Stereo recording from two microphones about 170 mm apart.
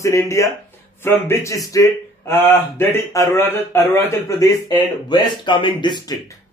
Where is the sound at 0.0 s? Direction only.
15° left (ahead or behind).